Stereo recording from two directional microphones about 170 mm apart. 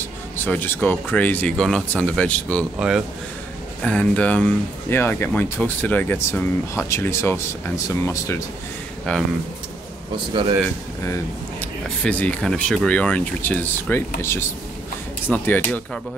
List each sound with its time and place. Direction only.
0.4 s speech: 10° left (ahead or behind)
3.8 s speech: 5° left (ahead or behind)
9.1 s speech: 5° left (ahead or behind)
10.3 s speech: 30° right (ahead or behind)
11.6 s speech: 10° left (ahead or behind)